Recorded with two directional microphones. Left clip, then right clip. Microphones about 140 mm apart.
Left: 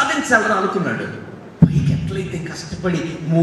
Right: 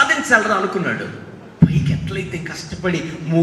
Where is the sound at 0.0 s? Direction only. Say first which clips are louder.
Right 3 dB; centre (ahead or behind).